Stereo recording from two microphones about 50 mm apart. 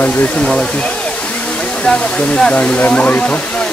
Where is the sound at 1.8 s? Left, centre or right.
Centre.